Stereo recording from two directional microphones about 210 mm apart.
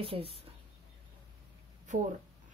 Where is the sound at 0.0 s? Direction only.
25° right (ahead or behind).